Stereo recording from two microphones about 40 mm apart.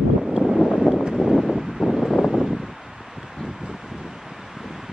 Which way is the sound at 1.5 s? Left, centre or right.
Centre.